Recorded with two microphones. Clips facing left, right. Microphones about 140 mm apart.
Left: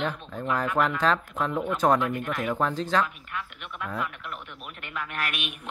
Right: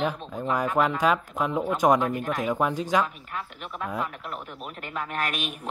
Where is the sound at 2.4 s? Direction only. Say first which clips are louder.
Right 1 dB; 10° right (ahead or behind).